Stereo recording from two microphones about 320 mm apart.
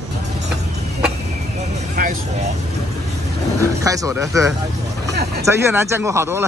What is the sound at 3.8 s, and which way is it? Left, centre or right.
Speech, centre.